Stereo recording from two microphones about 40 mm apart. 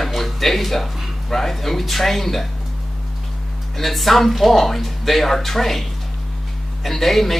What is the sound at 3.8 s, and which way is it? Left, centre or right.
Speech, centre.